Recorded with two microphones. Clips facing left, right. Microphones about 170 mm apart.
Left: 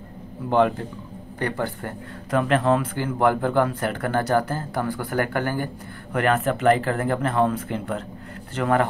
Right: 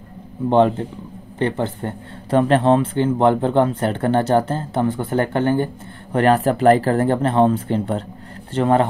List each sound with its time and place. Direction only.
0.5 s speech: 25° right (ahead or behind)